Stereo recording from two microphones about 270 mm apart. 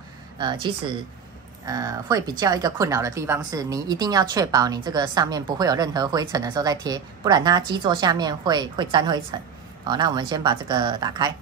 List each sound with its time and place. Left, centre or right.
0.4 s a woman's voice: centre